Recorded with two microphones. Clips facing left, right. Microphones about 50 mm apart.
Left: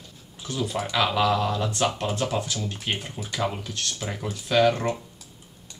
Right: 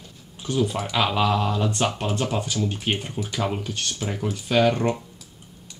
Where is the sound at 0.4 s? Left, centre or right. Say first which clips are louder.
Right 4 dB; centre.